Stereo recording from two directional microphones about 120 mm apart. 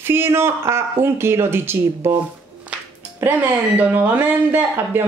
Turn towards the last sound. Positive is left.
turn(degrees=-15)  # may be behind; listen again after turning